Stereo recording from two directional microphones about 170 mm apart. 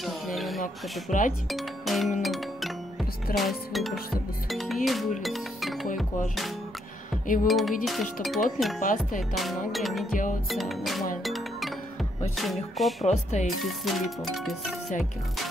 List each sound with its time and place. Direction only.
0.0 s music: centre (ahead or behind)
1.0 s speech: 50° left (ahead or behind)
1.5 s music: centre (ahead or behind)
3.3 s speech: centre (ahead or behind)
4.5 s music: centre (ahead or behind)
4.8 s speech: centre (ahead or behind)
8.7 s speech: 50° left (ahead or behind)
9.3 s speech: centre (ahead or behind)
11.2 s music: centre (ahead or behind)
12.4 s speech: centre (ahead or behind)
13.0 s speech: 45° left (ahead or behind)
13.6 s speech: centre (ahead or behind)